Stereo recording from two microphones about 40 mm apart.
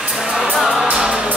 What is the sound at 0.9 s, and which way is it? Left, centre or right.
Music, centre.